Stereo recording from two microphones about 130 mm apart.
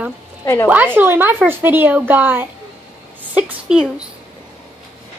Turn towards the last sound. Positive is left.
turn(degrees=-5)  # may be behind; listen again after turning